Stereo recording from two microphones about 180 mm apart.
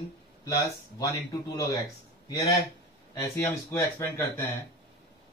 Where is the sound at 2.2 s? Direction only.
20° left (ahead or behind).